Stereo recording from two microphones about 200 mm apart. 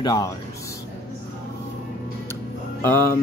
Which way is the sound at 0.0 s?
20° left (ahead or behind).